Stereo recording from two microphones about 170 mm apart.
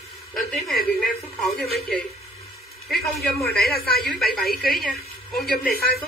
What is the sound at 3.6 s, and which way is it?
Speech, 65° left (ahead or behind).